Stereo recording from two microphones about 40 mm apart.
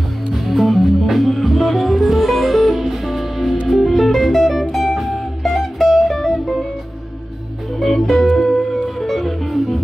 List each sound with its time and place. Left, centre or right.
0.3 s music: centre
7.8 s music: centre